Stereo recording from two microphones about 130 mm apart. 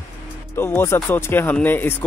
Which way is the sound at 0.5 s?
15° left (ahead or behind).